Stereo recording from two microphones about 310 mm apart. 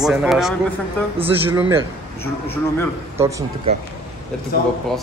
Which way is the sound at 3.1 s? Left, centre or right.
Centre.